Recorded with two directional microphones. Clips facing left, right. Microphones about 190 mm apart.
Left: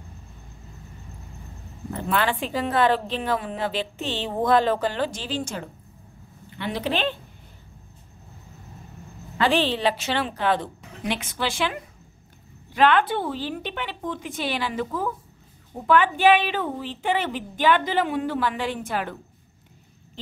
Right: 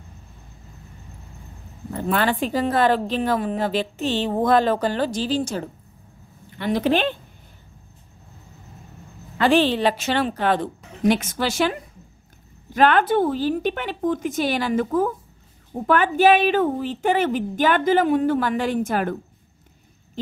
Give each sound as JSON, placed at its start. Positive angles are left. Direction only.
{"t": 2.1, "sound": "a woman's voice", "side_deg": -40}
{"t": 9.5, "sound": "a woman's voice", "side_deg": -45}